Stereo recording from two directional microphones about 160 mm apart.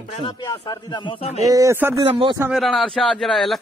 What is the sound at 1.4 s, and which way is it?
Speech, 20° right (ahead or behind).